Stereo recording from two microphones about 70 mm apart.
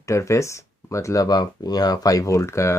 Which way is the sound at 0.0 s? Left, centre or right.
Left.